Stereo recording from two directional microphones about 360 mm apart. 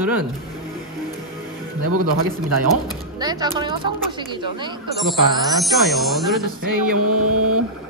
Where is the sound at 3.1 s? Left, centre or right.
Centre.